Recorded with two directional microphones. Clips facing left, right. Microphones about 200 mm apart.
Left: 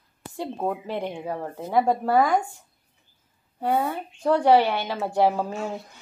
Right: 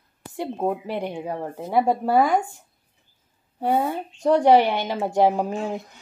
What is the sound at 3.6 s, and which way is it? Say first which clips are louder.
Speech: right 2 dB; 15° right (ahead or behind).